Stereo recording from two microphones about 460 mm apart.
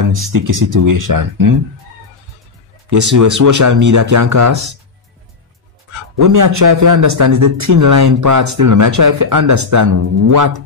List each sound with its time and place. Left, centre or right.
0.0 s speech: right
2.9 s speech: right
6.1 s speech: right